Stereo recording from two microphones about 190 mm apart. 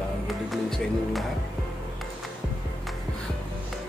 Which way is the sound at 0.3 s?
Centre (ahead or behind).